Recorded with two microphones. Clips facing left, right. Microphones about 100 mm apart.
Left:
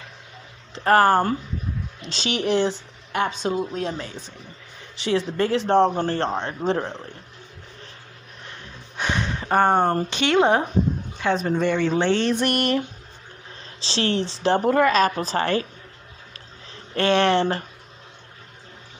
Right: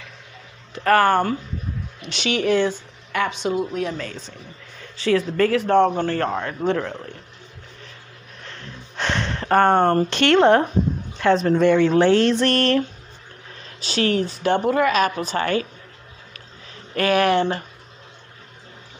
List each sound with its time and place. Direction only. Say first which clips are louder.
0.7 s a woman's voice: even; 30° left (ahead or behind)
8.5 s a sound: right 3 dB; 10° left (ahead or behind)
11.1 s a woman's voice: right 6 dB; 5° left (ahead or behind)
12.4 s a sound: right 3 dB; 15° left (ahead or behind)
13.7 s speech: right 3 dB; 30° left (ahead or behind)
14.7 s a woman's voice: left 2 dB; 40° left (ahead or behind)
16.9 s a woman's voice: right 1 dB; 30° left (ahead or behind)